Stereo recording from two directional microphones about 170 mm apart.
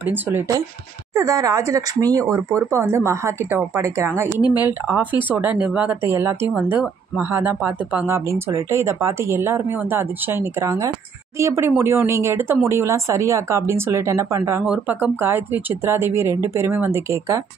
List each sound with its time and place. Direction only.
0.0 s speech: 10° right (ahead or behind)